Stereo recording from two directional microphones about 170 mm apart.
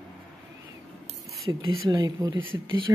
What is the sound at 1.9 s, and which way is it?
Speech, 20° right (ahead or behind).